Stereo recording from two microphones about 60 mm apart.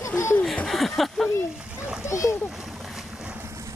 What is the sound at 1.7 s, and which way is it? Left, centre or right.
Splash, centre.